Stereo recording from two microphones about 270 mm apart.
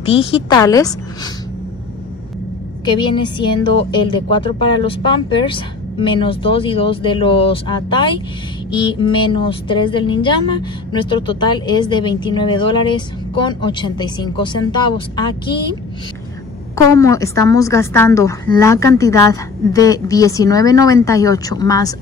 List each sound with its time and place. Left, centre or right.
0.0 s speech: left
2.8 s speech: centre
16.7 s speech: centre